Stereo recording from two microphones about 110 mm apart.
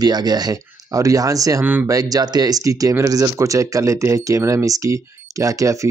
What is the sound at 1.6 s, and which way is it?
Speech, 15° right (ahead or behind).